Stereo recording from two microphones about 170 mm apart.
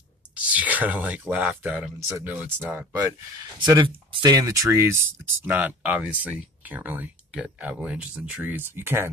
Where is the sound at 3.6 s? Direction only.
25° right (ahead or behind).